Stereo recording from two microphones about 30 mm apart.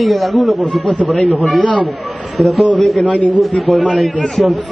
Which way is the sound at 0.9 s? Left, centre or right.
Left.